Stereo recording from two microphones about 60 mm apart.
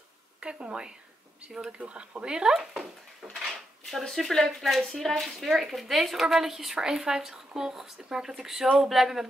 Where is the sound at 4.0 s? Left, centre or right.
Centre.